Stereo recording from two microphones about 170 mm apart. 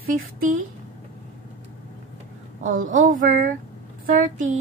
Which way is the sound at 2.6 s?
50° right (ahead or behind).